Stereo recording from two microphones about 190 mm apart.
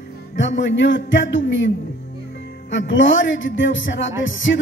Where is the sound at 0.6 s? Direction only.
70° left (ahead or behind).